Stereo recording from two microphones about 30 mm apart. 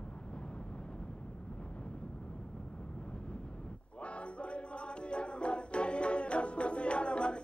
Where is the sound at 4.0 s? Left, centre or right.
Left.